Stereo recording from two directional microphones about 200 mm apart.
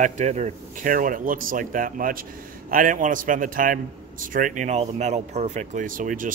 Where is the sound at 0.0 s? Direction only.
35° right (ahead or behind).